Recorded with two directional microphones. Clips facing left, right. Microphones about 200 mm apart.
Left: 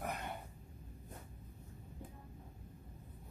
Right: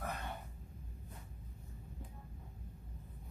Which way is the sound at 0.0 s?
15° left (ahead or behind).